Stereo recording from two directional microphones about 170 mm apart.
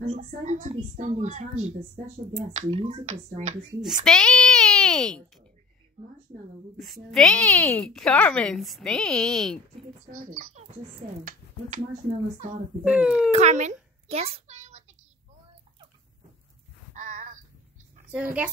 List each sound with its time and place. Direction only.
0.2 s a woman's voice: 45° right (ahead or behind)
4.0 s speech: 5° left (ahead or behind)
6.8 s a woman's voice: centre (ahead or behind)
10.0 s speech: 55° right (ahead or behind)
12.8 s a child's voice: 10° right (ahead or behind)
13.3 s a sound: 40° right (ahead or behind)
17.0 s a sound: 45° right (ahead or behind)
18.1 s a child's voice: 10° right (ahead or behind)